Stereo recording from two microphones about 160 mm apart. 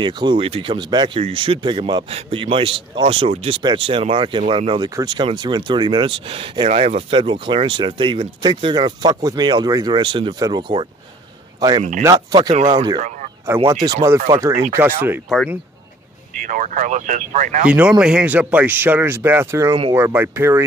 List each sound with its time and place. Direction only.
0.0 s speech: 30° right (ahead or behind)
12.0 s speech: 25° right (ahead or behind)
15.2 s speech: centre (ahead or behind)
16.3 s speech: 55° right (ahead or behind)
17.6 s speech: 5° right (ahead or behind)